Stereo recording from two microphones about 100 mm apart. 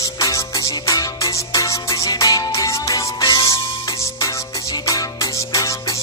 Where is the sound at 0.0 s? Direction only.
35° left (ahead or behind).